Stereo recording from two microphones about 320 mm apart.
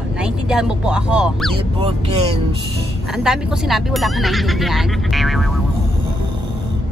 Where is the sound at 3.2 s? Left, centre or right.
Centre.